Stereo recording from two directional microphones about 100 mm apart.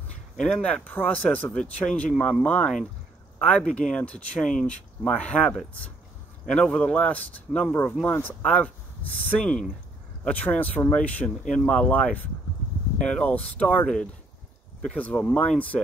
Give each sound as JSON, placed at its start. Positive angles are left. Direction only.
{"t": 0.4, "sound": "speech", "side_deg": 10}